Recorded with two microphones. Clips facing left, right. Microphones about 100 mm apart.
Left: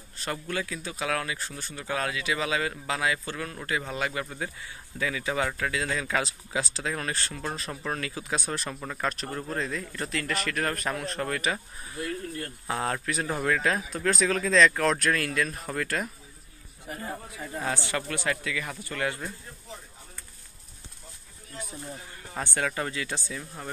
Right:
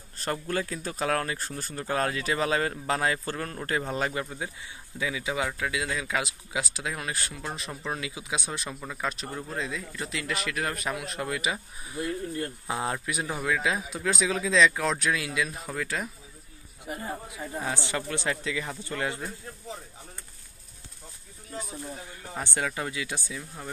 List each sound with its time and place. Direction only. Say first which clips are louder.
0.2 s speech: right 2 dB; 40° right (ahead or behind)
4.3 s speech: left 1 dB; 15° right (ahead or behind)
12.0 s speech: right 3 dB; 20° right (ahead or behind); by 16.1 s centre (ahead or behind)
16.8 s speech: right 1 dB; 15° right (ahead or behind)
22.4 s speech: left 1 dB; 20° right (ahead or behind)